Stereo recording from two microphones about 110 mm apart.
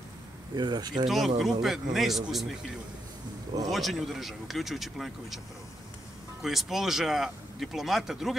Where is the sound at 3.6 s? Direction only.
Centre (ahead or behind).